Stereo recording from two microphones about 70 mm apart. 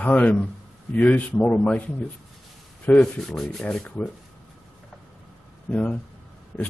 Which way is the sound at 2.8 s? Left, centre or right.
Left.